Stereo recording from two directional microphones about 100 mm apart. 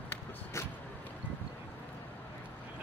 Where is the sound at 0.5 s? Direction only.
30° left (ahead or behind).